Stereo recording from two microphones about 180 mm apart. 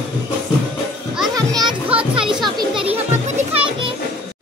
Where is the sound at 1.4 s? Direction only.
25° right (ahead or behind).